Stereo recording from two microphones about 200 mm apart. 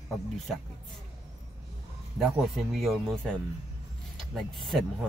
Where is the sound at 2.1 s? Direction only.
Centre (ahead or behind).